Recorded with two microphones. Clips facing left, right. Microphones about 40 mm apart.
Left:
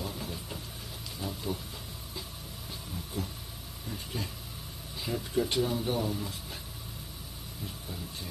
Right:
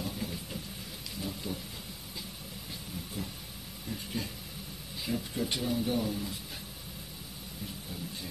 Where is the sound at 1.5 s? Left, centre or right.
Left.